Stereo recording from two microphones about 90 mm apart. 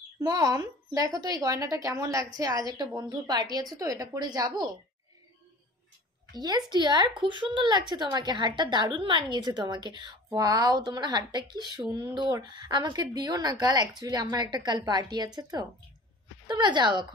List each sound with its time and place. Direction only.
0.2 s speech: 45° right (ahead or behind)
6.3 s a woman's voice: 50° right (ahead or behind)